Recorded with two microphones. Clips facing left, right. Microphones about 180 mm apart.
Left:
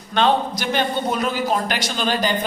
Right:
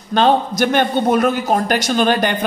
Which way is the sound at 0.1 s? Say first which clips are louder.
Right 4 dB; 45° right (ahead or behind).